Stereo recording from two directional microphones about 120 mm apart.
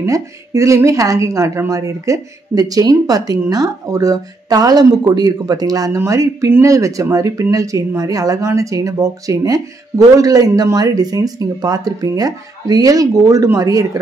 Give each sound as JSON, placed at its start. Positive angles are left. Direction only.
{"t": 0.0, "sound": "a woman's voice", "side_deg": -25}